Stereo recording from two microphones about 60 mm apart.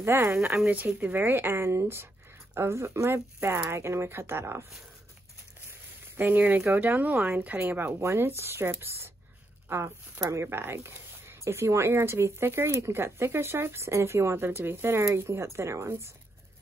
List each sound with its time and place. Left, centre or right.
0.0 s speech: right
0.7 s speech: right
6.1 s speech: right
8.0 s a woman's voice: right